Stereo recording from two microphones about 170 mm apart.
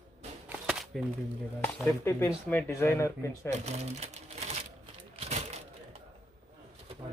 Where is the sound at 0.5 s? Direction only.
5° right (ahead or behind).